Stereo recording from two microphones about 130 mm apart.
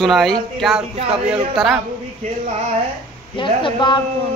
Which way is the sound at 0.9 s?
55° right (ahead or behind).